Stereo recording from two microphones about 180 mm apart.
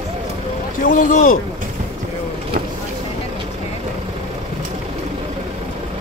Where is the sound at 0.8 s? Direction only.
50° left (ahead or behind).